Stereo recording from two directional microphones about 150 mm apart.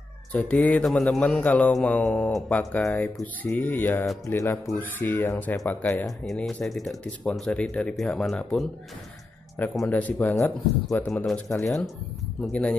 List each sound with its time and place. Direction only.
0.3 s a man's voice: 10° left (ahead or behind)
6.0 s speech: centre (ahead or behind)
9.8 s a man's voice: 10° left (ahead or behind)
11.0 s speech: 5° left (ahead or behind)
11.4 s speech: 20° left (ahead or behind)
12.4 s a man's voice: 5° left (ahead or behind)